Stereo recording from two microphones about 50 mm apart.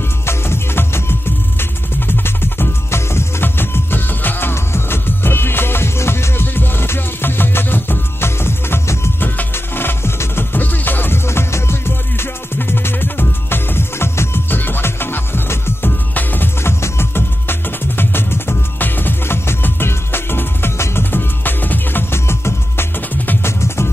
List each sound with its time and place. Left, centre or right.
0.3 s music: left
3.4 s music: left
11.2 s music: left
14.5 s music: left
16.2 s music: left
16.6 s music: left
21.0 s music: left
22.1 s music: left